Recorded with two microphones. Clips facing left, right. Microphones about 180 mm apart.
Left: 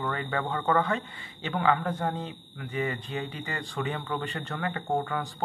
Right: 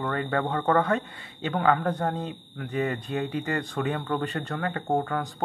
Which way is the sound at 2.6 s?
55° right (ahead or behind).